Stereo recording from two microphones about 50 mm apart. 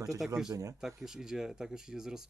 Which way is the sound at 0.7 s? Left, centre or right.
Centre.